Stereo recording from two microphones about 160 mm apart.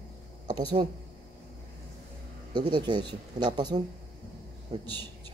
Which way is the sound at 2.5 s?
25° right (ahead or behind).